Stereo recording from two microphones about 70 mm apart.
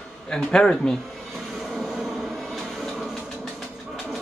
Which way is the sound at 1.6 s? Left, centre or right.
Centre.